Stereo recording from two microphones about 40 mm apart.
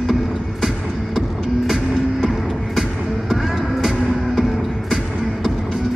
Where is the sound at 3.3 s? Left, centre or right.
Centre.